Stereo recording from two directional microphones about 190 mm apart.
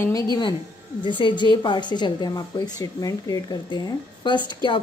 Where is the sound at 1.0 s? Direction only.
25° left (ahead or behind).